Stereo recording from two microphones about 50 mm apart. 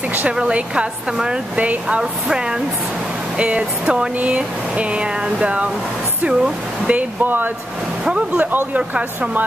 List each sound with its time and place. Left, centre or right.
0.3 s a woman's voice: centre
1.6 s speech: right
2.0 s a woman's voice: centre
7.2 s speech: right
8.0 s speech: right